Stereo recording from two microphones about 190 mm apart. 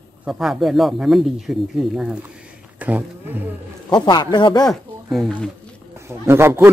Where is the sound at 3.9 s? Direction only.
20° left (ahead or behind).